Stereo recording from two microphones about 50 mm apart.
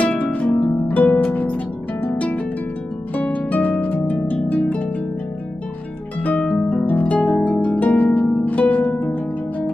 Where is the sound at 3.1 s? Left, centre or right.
Left.